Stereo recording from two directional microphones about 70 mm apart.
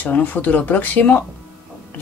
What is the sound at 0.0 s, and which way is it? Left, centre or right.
Speech, left.